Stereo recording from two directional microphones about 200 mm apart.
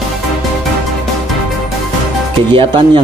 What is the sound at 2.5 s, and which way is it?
Speech, 25° right (ahead or behind).